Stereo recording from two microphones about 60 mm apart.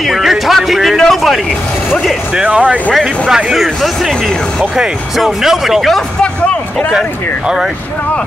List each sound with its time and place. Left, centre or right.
0.0 s speech: centre
2.4 s speech: centre
2.9 s speech: centre